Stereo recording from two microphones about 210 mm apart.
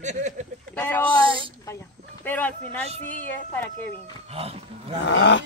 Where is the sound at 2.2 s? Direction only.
10° left (ahead or behind).